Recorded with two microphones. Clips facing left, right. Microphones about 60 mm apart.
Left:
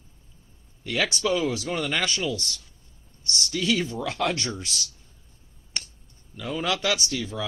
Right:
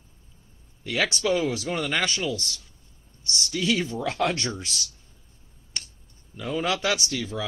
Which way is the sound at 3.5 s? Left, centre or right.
Centre.